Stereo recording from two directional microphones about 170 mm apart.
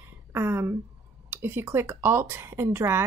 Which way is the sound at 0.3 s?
15° right (ahead or behind).